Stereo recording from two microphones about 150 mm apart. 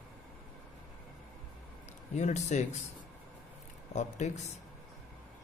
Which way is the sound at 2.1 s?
50° left (ahead or behind).